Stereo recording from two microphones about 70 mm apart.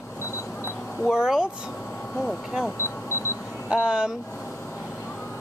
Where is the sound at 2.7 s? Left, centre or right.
Left.